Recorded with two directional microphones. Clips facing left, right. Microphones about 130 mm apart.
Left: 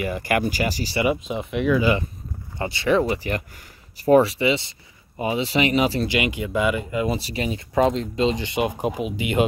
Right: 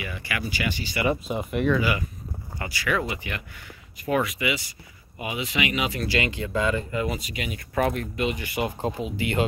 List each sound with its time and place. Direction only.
0.0 s speech: 45° left (ahead or behind)
1.2 s speech: centre (ahead or behind)
1.8 s speech: 25° left (ahead or behind)
6.0 s speech: 15° left (ahead or behind)
7.2 s speech: 35° left (ahead or behind)
7.7 s speech: 20° left (ahead or behind)